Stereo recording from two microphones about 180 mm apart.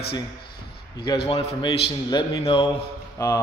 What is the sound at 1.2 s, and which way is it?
Speech, 35° left (ahead or behind).